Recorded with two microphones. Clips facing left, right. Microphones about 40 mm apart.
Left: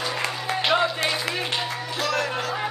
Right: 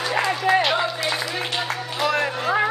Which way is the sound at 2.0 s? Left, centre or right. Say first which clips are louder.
Right 4 dB; right.